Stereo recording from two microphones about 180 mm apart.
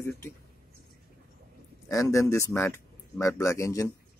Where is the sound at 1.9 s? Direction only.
15° left (ahead or behind).